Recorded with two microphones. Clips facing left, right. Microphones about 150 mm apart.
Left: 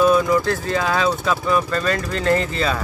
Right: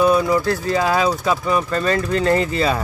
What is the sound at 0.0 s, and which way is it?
Speech, 15° right (ahead or behind).